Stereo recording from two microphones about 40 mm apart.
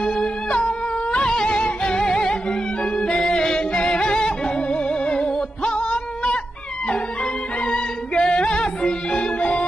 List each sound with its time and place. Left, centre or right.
0.5 s cat: left
1.3 s music: centre
7.6 s music: left